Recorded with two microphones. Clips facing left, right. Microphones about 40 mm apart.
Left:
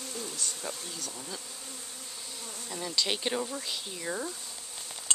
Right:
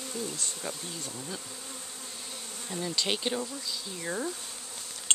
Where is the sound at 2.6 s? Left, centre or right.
Centre.